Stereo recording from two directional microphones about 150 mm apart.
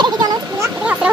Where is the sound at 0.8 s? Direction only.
5° right (ahead or behind).